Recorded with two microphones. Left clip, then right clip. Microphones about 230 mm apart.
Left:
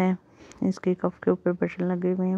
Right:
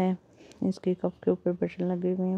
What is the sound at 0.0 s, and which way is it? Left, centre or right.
Speech, centre.